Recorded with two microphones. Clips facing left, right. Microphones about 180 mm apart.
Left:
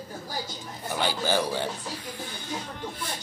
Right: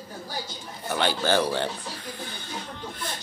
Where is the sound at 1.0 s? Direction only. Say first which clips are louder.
Right 3 dB; 10° left (ahead or behind).